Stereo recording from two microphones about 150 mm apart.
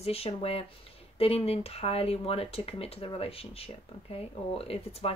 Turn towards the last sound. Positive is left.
turn(degrees=40)  # may be behind; listen again after turning